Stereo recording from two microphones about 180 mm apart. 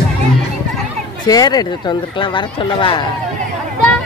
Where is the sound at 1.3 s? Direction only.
20° left (ahead or behind).